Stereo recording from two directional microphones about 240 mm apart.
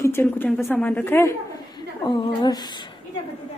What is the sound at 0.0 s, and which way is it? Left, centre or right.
Speech, centre.